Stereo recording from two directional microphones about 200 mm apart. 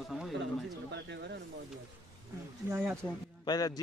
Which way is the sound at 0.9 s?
60° right (ahead or behind).